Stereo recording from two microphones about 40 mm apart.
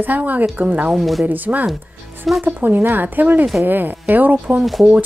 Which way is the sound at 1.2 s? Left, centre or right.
Right.